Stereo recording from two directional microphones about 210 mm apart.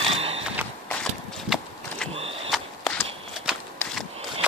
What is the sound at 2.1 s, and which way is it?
Mechanisms, 25° right (ahead or behind).